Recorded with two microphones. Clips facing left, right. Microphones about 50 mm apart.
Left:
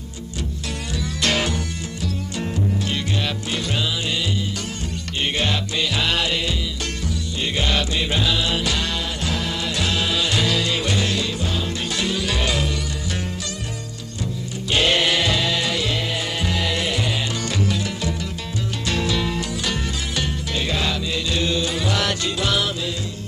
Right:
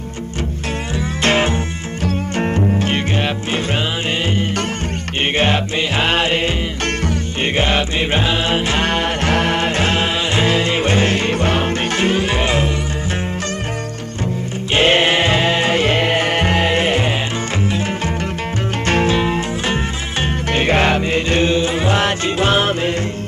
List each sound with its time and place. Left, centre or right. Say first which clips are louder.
1.2 s music: right 6 dB; right
2.0 s music: right 9 dB; right
5.4 s music: right 7 dB; right
7.5 s music: right 5 dB; right
14.7 s music: right 5 dB; right